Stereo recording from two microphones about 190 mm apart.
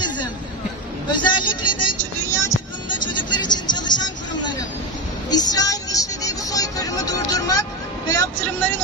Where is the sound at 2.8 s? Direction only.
25° left (ahead or behind).